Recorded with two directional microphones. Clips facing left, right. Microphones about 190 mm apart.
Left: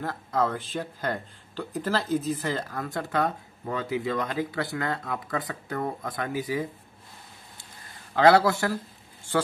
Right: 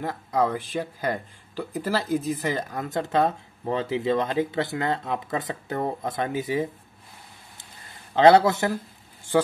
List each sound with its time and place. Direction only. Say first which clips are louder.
0.0 s speech: right 2 dB; 15° right (ahead or behind)
8.1 s speech: right 3 dB; 20° right (ahead or behind)